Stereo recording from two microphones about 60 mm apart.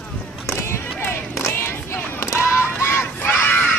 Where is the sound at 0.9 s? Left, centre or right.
Left.